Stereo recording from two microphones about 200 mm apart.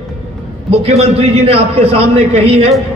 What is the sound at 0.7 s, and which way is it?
A man's voice, 30° right (ahead or behind).